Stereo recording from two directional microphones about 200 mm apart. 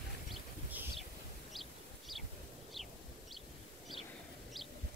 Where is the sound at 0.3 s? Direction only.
5° right (ahead or behind).